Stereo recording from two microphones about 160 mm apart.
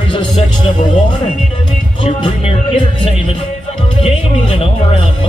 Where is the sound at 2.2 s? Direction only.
35° left (ahead or behind).